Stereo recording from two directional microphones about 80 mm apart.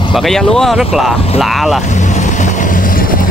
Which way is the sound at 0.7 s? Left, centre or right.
Centre.